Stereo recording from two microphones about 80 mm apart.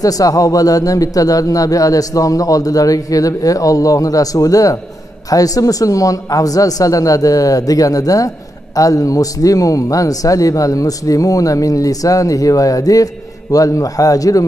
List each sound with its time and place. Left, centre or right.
0.0 s a man's voice: left